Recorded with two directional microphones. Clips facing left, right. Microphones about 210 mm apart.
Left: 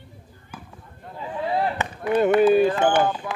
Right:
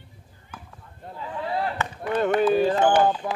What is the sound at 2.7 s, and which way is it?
Speech, 35° right (ahead or behind).